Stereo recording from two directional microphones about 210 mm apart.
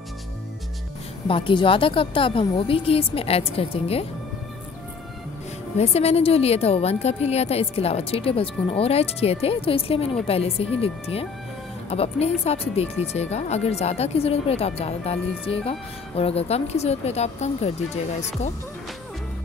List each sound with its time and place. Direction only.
1.2 s a woman's voice: 25° left (ahead or behind)
5.8 s a woman's voice: 30° left (ahead or behind)